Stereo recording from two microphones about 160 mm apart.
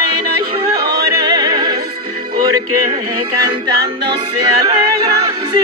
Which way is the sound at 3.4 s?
25° right (ahead or behind).